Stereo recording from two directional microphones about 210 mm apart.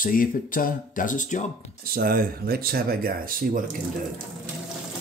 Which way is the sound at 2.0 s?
45° right (ahead or behind).